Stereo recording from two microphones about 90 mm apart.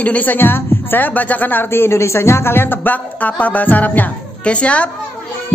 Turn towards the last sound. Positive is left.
turn(degrees=15)  # may be behind; listen again after turning